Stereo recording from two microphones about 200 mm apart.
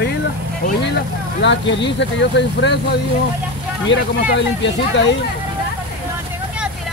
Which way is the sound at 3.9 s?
65° left (ahead or behind).